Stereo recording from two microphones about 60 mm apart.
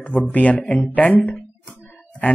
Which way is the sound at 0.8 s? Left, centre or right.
Left.